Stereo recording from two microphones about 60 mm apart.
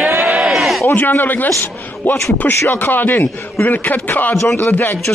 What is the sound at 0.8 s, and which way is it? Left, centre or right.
Speech, left.